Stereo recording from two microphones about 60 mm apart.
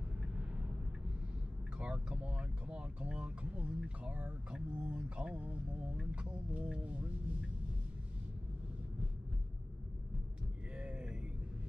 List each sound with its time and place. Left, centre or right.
0.2 s vehicle: centre
1.8 s speech: centre
10.7 s a sound: centre